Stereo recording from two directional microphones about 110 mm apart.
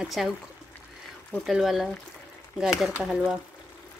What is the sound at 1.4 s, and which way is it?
Speech, centre (ahead or behind).